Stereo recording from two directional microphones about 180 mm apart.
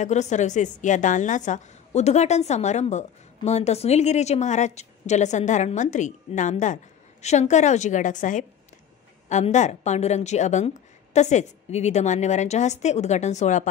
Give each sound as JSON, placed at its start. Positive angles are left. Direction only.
{"t": 0.0, "sound": "a woman's voice", "side_deg": 40}